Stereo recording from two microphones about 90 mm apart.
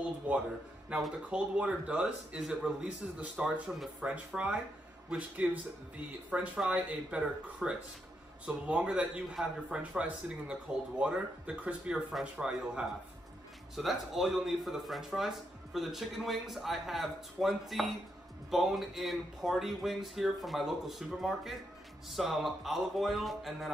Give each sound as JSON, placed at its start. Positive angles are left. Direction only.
{"t": 0.8, "sound": "a man's voice", "side_deg": -10}
{"t": 6.3, "sound": "a man's voice", "side_deg": -15}